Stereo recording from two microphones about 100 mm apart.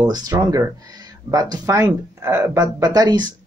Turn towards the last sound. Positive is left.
turn(degrees=-45)  # may be behind; listen again after turning